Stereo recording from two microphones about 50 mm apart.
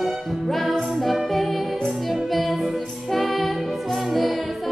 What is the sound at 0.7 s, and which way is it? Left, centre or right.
Music, centre.